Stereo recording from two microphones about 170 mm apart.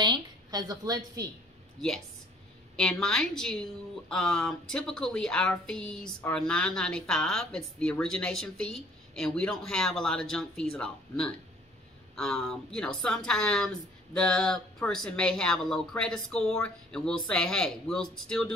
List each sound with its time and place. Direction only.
0.0 s a woman's voice: 25° right (ahead or behind)
2.7 s a woman's voice: 5° left (ahead or behind)